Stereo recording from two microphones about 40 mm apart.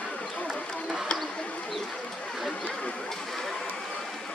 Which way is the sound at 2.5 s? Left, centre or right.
Centre.